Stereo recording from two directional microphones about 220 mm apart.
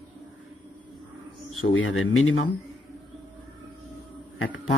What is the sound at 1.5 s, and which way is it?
Speech, 65° left (ahead or behind).